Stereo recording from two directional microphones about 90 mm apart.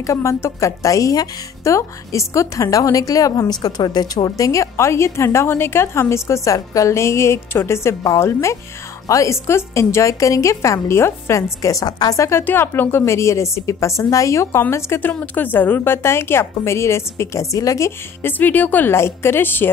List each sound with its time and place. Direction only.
0.0 s a woman's voice: 30° left (ahead or behind)
18.2 s a woman's voice: 20° left (ahead or behind)